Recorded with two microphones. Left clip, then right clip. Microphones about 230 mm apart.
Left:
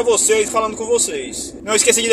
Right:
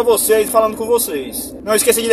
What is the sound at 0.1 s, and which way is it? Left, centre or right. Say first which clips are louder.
Speech: right 3 dB; centre.